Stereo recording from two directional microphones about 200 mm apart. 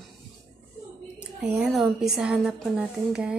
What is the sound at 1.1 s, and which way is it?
A woman's voice, 5° right (ahead or behind).